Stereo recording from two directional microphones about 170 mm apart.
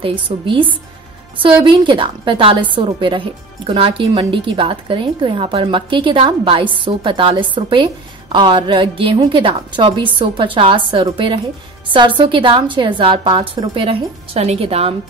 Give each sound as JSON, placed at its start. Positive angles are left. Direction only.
{"t": 0.0, "sound": "a woman's voice", "side_deg": -30}